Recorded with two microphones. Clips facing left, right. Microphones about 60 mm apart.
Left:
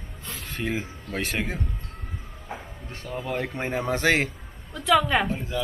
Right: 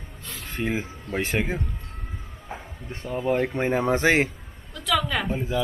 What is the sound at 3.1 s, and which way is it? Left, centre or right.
Speech, centre.